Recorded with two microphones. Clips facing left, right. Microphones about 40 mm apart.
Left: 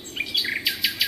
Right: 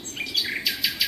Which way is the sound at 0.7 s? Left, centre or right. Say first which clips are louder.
Left 1 dB; left.